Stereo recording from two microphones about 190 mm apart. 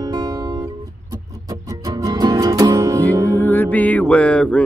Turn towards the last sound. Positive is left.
turn(degrees=5)  # may be behind; listen again after turning